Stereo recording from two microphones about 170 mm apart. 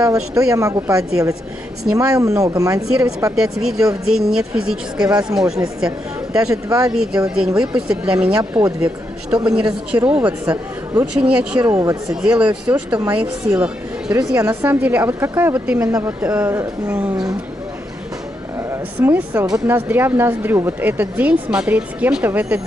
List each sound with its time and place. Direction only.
0.0 s speech: 20° right (ahead or behind)
3.3 s a woman's voice: 5° right (ahead or behind)
6.5 s speech: 20° right (ahead or behind)
7.2 s a woman's voice: 5° right (ahead or behind)
8.4 s speech: 20° right (ahead or behind)
9.5 s speech: 5° right (ahead or behind)
11.6 s speech: 15° right (ahead or behind)
12.2 s speech: 5° right (ahead or behind)
14.3 s speech: 15° right (ahead or behind)
18.7 s a woman's voice: 10° right (ahead or behind)